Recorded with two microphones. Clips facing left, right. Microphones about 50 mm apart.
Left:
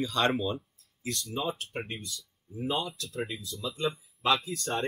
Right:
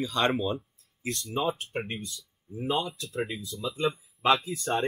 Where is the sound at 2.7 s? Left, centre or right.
Centre.